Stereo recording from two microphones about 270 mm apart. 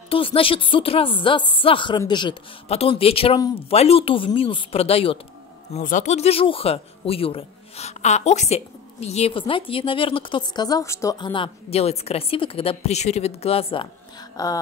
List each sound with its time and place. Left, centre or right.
0.1 s speech: centre